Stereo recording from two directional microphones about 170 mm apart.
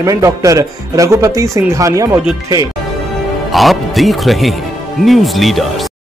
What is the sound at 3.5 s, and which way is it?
Speech, centre (ahead or behind).